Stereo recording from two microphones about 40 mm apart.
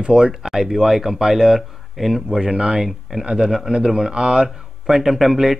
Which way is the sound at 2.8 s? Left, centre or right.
Centre.